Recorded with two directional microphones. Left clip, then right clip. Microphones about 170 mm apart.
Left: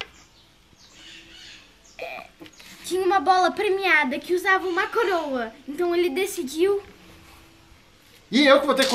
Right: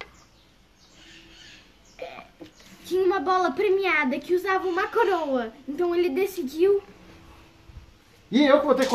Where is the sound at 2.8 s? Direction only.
15° left (ahead or behind).